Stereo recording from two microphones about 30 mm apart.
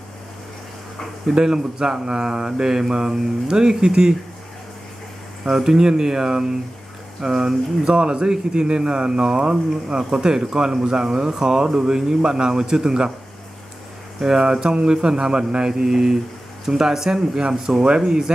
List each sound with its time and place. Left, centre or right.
1.3 s speech: right
5.5 s speech: centre
7.8 s a man's voice: right
14.4 s speech: right; by 17.8 s centre
17.8 s speech: right